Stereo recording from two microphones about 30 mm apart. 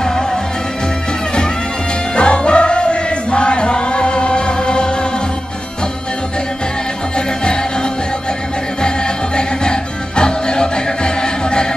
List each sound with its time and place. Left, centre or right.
0.0 s music: centre
2.1 s music: left
8.8 s music: left